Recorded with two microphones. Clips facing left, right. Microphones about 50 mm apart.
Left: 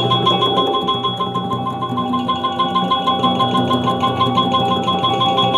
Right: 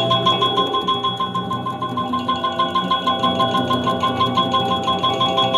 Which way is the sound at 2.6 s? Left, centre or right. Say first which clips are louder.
Left 2 dB; centre.